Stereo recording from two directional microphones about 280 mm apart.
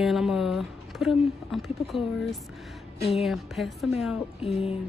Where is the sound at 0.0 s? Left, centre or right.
Centre.